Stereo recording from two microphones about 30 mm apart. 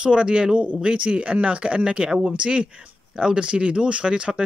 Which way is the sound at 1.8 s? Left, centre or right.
Right.